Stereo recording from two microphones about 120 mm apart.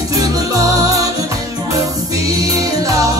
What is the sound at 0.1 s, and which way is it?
Music, 30° right (ahead or behind).